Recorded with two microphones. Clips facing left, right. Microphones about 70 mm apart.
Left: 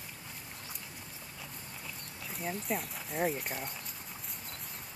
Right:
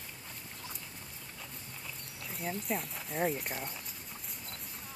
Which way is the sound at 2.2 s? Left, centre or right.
Centre.